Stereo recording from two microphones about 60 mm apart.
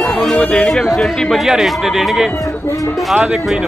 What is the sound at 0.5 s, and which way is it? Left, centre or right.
Speech, centre.